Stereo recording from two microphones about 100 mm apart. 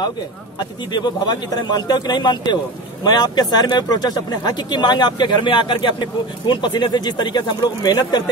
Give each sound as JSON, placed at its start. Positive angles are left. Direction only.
{"t": 0.6, "sound": "speech", "side_deg": 45}